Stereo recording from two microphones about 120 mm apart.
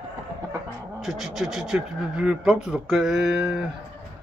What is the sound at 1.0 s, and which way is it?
Speech, centre (ahead or behind).